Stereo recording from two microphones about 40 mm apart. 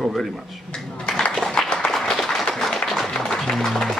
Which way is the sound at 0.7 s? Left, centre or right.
Left.